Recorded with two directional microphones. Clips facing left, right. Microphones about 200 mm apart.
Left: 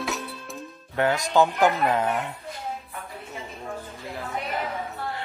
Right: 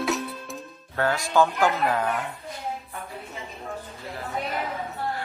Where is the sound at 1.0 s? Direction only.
20° left (ahead or behind).